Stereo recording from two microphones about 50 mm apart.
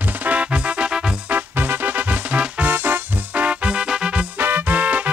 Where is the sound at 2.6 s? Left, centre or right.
Right.